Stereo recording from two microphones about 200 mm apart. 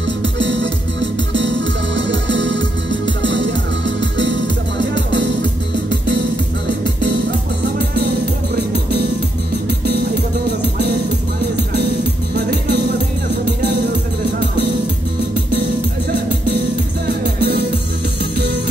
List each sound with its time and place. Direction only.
0.2 s music: 65° right (ahead or behind)
2.0 s music: 65° right (ahead or behind)
12.4 s music: 55° right (ahead or behind)
17.4 s music: 55° right (ahead or behind)